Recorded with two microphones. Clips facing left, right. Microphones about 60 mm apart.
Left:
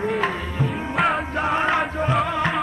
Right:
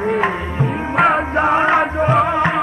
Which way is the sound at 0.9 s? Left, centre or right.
Centre.